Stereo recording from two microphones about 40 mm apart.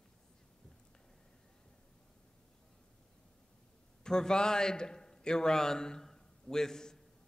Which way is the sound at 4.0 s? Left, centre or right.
Centre.